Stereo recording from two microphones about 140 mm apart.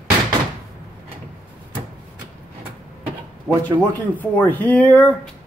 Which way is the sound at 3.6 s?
15° left (ahead or behind).